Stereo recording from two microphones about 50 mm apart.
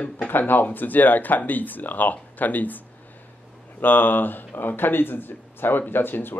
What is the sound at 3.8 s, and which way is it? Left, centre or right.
A man's voice, left.